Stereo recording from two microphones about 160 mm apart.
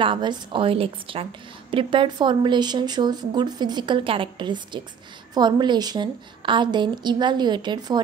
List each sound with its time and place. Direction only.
0.0 s a woman's voice: 30° right (ahead or behind)